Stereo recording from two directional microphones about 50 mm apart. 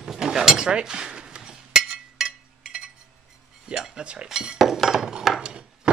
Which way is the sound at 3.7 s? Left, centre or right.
Centre.